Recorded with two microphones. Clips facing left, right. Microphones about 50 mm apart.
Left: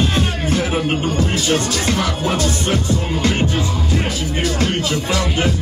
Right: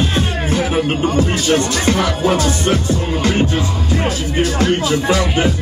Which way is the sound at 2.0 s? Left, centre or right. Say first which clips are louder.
Right 4 dB; centre.